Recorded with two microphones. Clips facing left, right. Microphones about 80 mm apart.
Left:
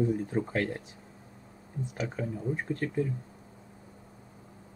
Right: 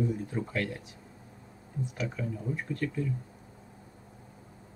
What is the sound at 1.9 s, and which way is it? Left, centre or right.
Speech, left.